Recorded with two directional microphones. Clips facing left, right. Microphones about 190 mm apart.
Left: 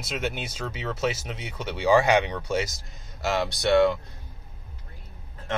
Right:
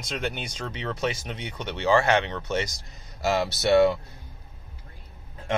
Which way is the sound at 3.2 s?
Centre (ahead or behind).